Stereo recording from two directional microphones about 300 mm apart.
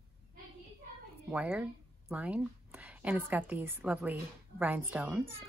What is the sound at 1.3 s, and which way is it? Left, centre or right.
Speech, centre.